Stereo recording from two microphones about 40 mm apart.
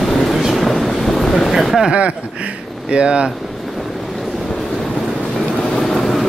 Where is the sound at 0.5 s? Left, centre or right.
Centre.